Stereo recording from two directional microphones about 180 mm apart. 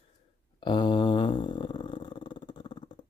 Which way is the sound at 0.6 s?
25° left (ahead or behind).